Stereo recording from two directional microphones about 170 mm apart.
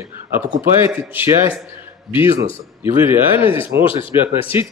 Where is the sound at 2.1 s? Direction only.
30° left (ahead or behind).